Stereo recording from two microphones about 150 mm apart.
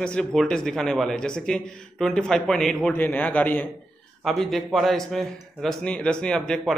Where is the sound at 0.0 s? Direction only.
5° left (ahead or behind).